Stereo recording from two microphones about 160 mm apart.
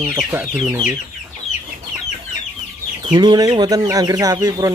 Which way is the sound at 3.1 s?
25° right (ahead or behind).